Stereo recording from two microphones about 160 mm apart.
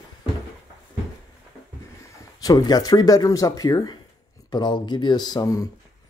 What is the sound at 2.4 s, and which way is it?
Speech, 25° left (ahead or behind).